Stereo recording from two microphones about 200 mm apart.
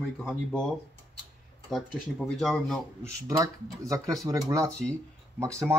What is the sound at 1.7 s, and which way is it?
Speech, centre (ahead or behind).